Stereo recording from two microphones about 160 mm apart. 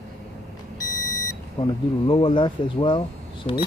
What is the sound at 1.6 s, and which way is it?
Speech, 30° left (ahead or behind).